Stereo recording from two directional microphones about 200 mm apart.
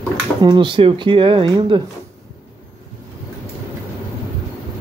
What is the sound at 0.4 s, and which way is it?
Speech, 20° right (ahead or behind).